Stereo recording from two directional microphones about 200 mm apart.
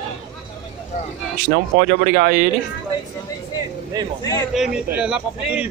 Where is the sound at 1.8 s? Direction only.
45° right (ahead or behind).